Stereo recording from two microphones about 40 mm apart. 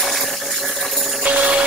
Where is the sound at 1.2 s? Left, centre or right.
Right.